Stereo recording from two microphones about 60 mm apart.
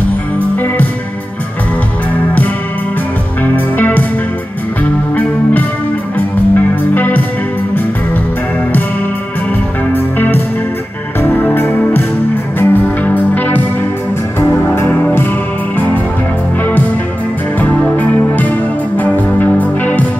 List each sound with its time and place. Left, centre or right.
3.4 s music: left
9.9 s music: left
14.4 s music: left
14.9 s music: left
17.9 s music: left